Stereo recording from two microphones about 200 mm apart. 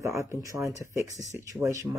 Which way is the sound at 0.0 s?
15° right (ahead or behind).